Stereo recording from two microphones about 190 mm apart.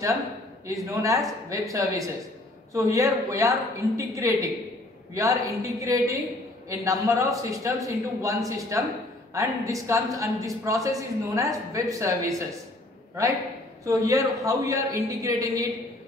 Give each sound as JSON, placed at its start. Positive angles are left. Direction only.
{"t": 0.7, "sound": "a woman's voice", "side_deg": -15}
{"t": 13.8, "sound": "a woman's voice", "side_deg": -15}